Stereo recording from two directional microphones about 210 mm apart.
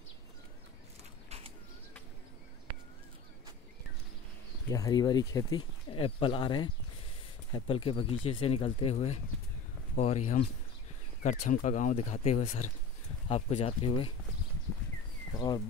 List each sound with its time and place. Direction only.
4.6 s speech: 15° left (ahead or behind)
15.3 s speech: 20° left (ahead or behind)